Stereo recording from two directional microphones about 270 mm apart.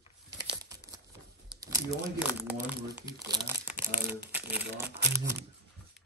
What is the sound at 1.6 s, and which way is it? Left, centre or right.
Speech, centre.